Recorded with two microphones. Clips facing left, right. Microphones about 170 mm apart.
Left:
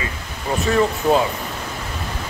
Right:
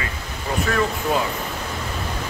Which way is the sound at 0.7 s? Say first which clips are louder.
Left 5 dB; 25° left (ahead or behind).